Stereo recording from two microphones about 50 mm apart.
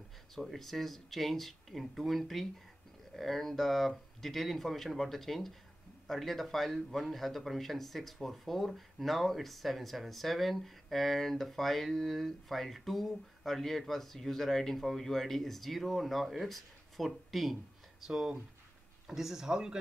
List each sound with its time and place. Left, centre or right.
0.3 s speech: centre
18.0 s speech: centre